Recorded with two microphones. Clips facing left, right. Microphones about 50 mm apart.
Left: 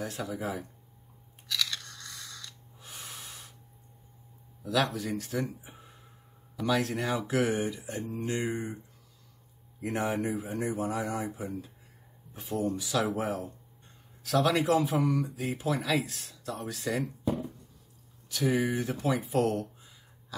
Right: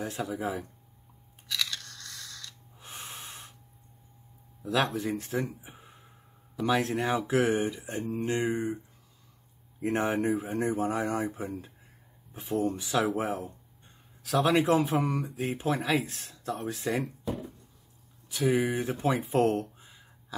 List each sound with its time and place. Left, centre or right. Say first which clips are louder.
0.0 s speech: right 2 dB; right
1.5 s scissors: even; centre
1.9 s scissors: even; centre
2.8 s snort: right 2 dB; right
4.6 s speech: right 1 dB; right
9.8 s speech: right 3 dB; right
18.3 s speech: right 2 dB; centre
18.7 s speech: right 1 dB; right